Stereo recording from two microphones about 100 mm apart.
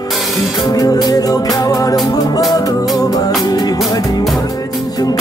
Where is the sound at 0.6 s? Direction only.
40° left (ahead or behind).